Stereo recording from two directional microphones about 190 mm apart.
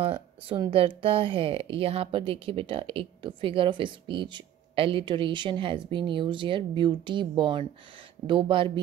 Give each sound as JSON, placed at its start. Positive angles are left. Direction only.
{"t": 0.0, "sound": "a woman's voice", "side_deg": -30}